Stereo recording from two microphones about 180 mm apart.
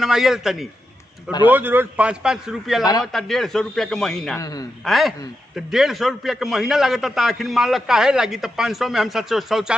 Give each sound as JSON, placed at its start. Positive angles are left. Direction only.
{"t": 0.0, "sound": "a man's voice", "side_deg": 0}
{"t": 4.4, "sound": "a man's voice", "side_deg": 20}
{"t": 4.8, "sound": "a man's voice", "side_deg": 0}